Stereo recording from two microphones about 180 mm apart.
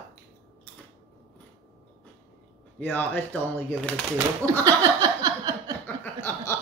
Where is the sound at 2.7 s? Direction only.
10° left (ahead or behind).